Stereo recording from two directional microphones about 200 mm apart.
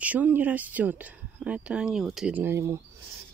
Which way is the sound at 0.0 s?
10° right (ahead or behind).